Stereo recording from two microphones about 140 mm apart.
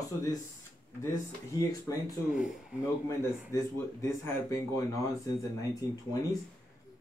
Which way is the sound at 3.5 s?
20° left (ahead or behind).